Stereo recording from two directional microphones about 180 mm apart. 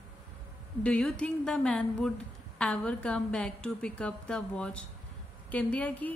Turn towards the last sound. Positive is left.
turn(degrees=10)  # may be behind; listen again after turning